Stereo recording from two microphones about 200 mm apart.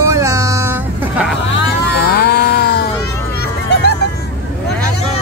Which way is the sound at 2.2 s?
55° left (ahead or behind).